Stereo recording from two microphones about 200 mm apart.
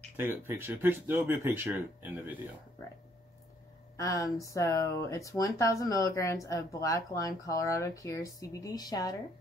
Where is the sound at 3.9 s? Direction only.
15° left (ahead or behind).